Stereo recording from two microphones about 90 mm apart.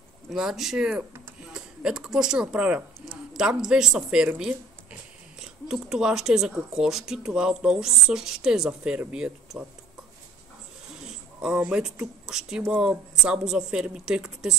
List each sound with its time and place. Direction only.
0.3 s speech: 5° right (ahead or behind)
5.4 s speech: 5° right (ahead or behind)
11.1 s a sound: 5° right (ahead or behind)
11.7 s speech: 10° right (ahead or behind)